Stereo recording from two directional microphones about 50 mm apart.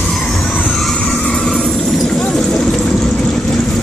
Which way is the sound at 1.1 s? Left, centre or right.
Centre.